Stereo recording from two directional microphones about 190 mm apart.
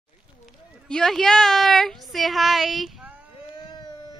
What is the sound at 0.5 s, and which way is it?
Speech, 5° left (ahead or behind).